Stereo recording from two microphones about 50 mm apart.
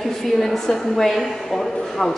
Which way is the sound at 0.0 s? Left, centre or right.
Centre.